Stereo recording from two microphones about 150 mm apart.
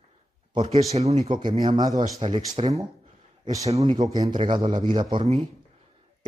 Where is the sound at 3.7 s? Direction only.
45° right (ahead or behind).